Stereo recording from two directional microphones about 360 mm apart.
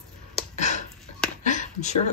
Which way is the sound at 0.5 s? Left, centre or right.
Centre.